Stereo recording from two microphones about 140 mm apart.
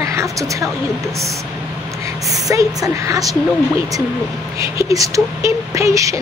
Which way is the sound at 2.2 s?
25° right (ahead or behind).